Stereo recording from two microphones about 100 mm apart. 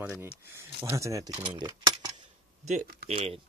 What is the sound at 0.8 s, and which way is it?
Speech, 30° right (ahead or behind).